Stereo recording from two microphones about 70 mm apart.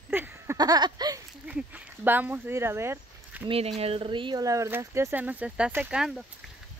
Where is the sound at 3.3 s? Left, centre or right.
Right.